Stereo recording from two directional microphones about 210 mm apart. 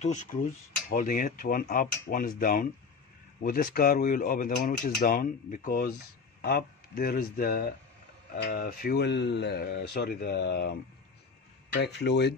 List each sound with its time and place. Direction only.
0.0 s cutlery: 35° left (ahead or behind)
6.4 s speech: 45° left (ahead or behind)
11.8 s speech: 55° left (ahead or behind)